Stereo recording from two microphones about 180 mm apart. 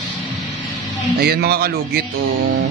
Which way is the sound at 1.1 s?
60° right (ahead or behind).